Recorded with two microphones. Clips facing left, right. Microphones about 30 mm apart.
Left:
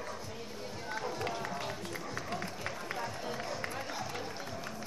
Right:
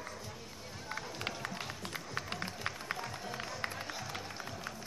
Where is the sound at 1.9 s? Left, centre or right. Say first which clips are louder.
Left 2 dB; right.